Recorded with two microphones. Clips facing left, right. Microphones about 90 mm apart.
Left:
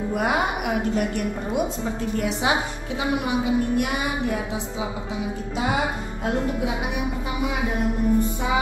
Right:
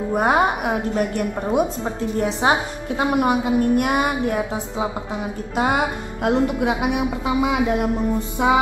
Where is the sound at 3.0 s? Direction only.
55° right (ahead or behind).